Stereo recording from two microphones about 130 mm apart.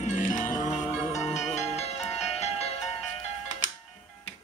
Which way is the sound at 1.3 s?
60° left (ahead or behind).